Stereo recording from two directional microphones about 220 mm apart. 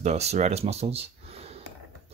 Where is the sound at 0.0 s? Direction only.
30° right (ahead or behind).